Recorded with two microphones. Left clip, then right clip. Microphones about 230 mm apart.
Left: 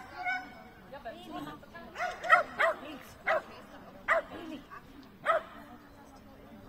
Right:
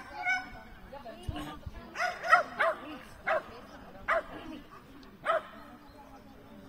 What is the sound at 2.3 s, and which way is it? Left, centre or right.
Bow-wow, centre.